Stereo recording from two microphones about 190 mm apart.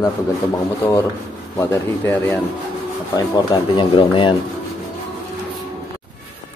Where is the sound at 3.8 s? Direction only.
25° left (ahead or behind).